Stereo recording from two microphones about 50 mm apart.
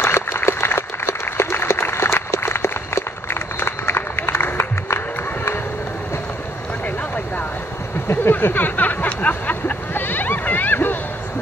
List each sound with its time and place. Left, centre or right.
0.0 s applause: left
4.8 s music: left
8.1 s a sound: left